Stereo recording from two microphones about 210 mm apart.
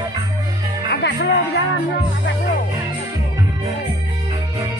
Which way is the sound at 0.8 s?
50° left (ahead or behind).